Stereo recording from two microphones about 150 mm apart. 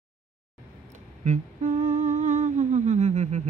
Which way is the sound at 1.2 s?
55° right (ahead or behind).